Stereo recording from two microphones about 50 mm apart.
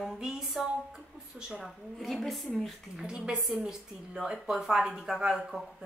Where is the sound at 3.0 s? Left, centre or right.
Centre.